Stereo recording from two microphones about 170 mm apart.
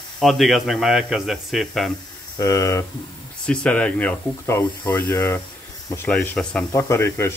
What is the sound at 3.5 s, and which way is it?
Speech, 5° left (ahead or behind).